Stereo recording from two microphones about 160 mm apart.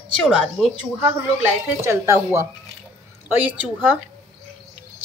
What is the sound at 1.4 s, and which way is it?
Speech, 15° right (ahead or behind).